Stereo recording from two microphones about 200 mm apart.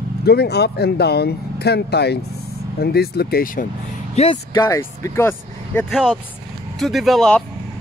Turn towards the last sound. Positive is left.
turn(degrees=0)  # may be behind; listen again after turning